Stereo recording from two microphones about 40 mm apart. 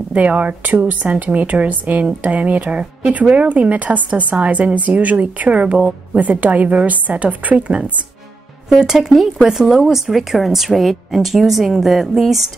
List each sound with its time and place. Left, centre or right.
0.1 s speech: right
8.6 s speech: centre